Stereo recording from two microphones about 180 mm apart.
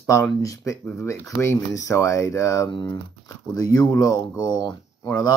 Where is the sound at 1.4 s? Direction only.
15° left (ahead or behind).